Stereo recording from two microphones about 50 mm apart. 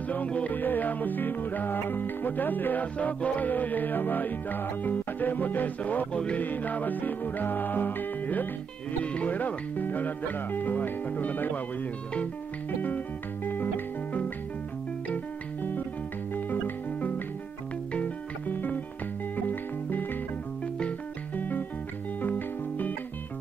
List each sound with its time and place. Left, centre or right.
0.1 s music: left
6.1 s music: left
6.4 s music: left
9.0 s music: left
13.5 s music: left
16.3 s music: left
18.5 s music: left
21.4 s music: left